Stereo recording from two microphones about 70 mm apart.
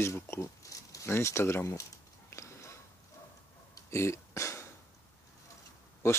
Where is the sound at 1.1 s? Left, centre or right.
Left.